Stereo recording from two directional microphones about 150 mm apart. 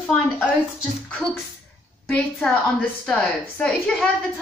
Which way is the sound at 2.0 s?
5° left (ahead or behind).